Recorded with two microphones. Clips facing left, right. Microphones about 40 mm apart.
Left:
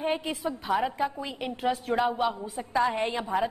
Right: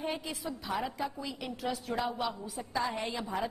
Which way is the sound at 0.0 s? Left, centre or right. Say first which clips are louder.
Left 7 dB; left.